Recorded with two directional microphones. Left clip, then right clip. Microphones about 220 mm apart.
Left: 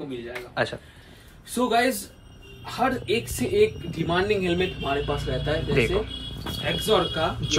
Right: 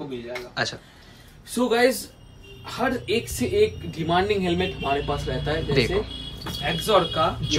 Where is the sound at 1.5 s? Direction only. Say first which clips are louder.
Right 2 dB; centre (ahead or behind).